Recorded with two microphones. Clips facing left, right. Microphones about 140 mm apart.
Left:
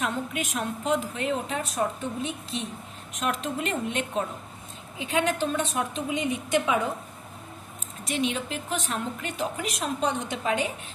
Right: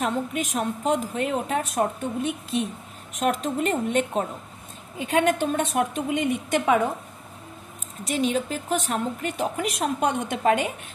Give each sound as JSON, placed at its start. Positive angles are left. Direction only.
{"t": 0.0, "sound": "a woman's voice", "side_deg": -40}
{"t": 8.1, "sound": "a woman's voice", "side_deg": -40}